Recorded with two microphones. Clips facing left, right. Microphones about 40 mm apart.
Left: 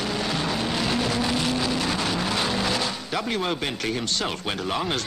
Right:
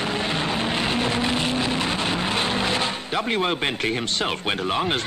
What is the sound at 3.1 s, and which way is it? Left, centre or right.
Speech, right.